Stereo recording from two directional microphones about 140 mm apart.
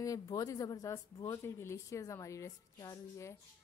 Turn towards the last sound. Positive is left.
turn(degrees=20)  # may be behind; listen again after turning